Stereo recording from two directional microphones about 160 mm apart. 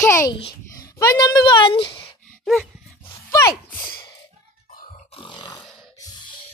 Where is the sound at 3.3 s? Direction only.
20° left (ahead or behind).